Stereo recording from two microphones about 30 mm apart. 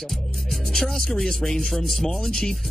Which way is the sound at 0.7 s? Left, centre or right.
Centre.